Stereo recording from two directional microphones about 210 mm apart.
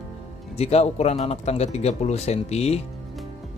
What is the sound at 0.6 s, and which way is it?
Speech, 30° left (ahead or behind).